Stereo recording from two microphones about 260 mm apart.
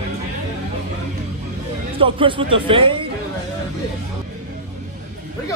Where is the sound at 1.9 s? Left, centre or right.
Centre.